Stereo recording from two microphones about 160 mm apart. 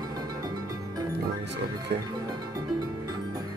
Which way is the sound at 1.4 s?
90° right.